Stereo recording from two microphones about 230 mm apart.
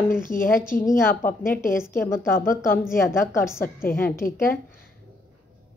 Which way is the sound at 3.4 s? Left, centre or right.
Centre.